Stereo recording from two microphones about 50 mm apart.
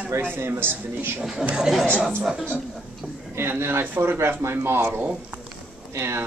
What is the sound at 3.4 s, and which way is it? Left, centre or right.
A man's voice, right.